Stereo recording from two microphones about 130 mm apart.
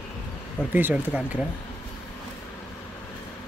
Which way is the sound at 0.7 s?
15° right (ahead or behind).